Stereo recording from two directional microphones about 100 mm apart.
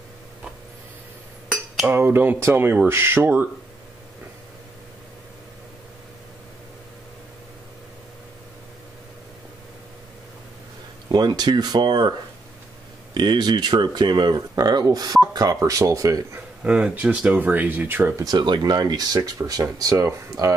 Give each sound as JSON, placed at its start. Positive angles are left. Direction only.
{"t": 1.9, "sound": "speech", "side_deg": -20}
{"t": 11.1, "sound": "speech", "side_deg": -45}
{"t": 16.6, "sound": "speech", "side_deg": -10}
{"t": 18.1, "sound": "speech", "side_deg": -40}